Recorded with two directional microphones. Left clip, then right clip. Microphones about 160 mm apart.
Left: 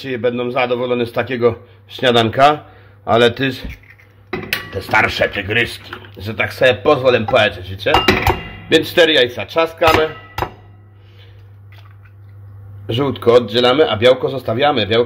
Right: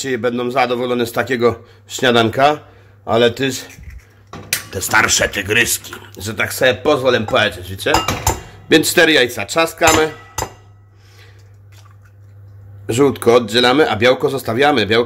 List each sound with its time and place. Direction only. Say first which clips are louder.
0.0 s a man's voice: even; 25° right (ahead or behind); by 2.6 s 10° right (ahead or behind)
3.1 s a man's voice: left 1 dB; centre (ahead or behind)
4.6 s speech: right 1 dB; 15° right (ahead or behind)
8.7 s speech: even; 35° right (ahead or behind)
12.8 s speech: right 2 dB; 35° right (ahead or behind)